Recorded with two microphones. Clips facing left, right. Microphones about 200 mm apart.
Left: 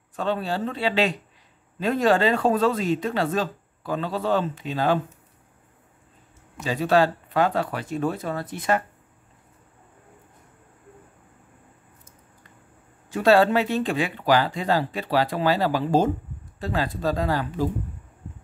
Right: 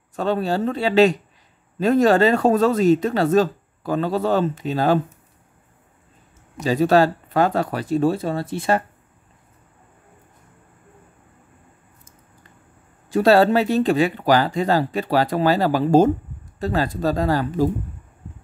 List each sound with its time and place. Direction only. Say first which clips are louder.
0.1 s speech: right 5 dB; 40° right (ahead or behind)
6.6 s speech: right 4 dB; 40° right (ahead or behind)
13.1 s speech: right 3 dB; 40° right (ahead or behind)